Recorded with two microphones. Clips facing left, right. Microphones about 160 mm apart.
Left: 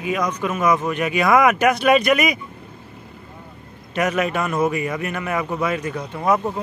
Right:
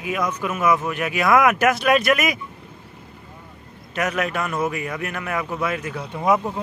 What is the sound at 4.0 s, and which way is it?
Speech, centre (ahead or behind).